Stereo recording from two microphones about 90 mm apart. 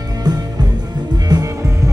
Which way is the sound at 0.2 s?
50° right (ahead or behind).